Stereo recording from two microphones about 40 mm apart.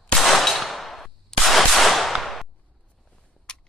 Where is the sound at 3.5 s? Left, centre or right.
Left.